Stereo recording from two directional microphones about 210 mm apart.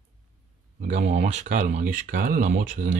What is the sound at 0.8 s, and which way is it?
Speech, 35° right (ahead or behind).